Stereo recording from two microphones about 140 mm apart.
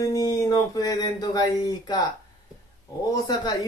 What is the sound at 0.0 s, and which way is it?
Speech, 25° left (ahead or behind).